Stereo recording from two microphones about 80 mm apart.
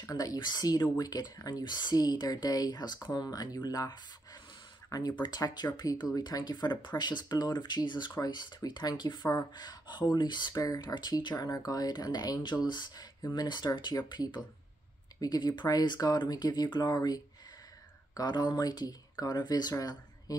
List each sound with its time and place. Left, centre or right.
0.1 s speech: left
5.2 s speech: left
8.5 s speech: left
10.5 s speech: left